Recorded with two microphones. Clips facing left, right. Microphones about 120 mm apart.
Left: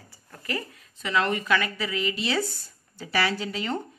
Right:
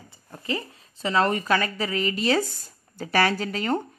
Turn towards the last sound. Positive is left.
turn(degrees=-50)  # may be behind; listen again after turning